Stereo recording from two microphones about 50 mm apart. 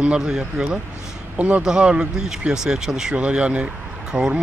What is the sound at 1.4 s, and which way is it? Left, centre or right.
Speech, right.